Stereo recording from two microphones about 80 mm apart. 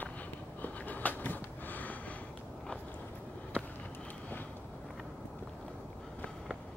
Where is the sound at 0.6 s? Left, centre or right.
Left.